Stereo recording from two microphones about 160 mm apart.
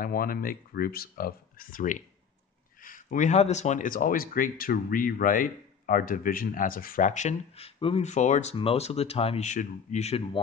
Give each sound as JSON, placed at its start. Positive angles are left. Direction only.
{"t": 0.0, "sound": "speech", "side_deg": 65}